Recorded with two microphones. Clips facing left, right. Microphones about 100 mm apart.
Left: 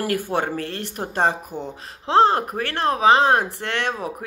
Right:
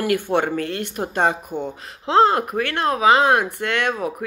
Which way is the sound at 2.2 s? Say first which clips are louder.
Right 1 dB; 35° left (ahead or behind).